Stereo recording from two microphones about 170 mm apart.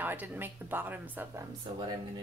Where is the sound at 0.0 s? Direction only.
10° right (ahead or behind).